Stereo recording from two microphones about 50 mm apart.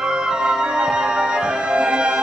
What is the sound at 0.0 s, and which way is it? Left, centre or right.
Music, centre.